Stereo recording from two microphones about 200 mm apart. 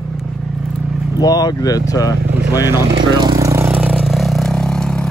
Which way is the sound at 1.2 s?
20° left (ahead or behind).